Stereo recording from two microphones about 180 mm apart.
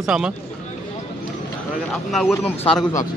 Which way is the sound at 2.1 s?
5° left (ahead or behind).